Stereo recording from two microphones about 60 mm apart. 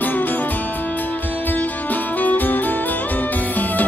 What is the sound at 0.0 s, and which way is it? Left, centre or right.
Music, left.